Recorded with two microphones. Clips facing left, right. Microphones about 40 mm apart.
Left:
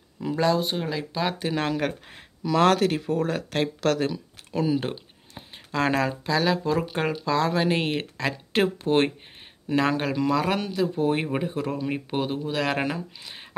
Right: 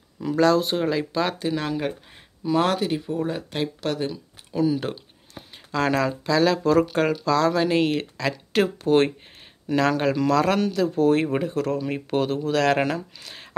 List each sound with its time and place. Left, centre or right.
0.2 s speech: centre
0.7 s speech: centre
1.4 s speech: left
3.1 s speech: left
3.8 s speech: left
4.5 s speech: left; by 13.5 s centre